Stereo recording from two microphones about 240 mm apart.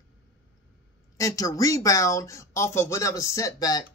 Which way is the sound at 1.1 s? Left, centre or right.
Centre.